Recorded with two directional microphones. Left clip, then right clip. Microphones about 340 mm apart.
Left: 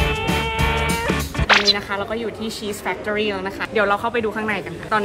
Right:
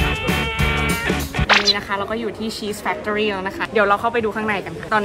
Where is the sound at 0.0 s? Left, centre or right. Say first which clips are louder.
Even; centre.